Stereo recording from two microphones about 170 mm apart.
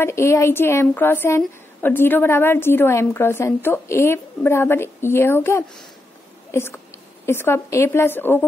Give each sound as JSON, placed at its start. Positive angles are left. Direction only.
{"t": 0.0, "sound": "a woman's voice", "side_deg": 15}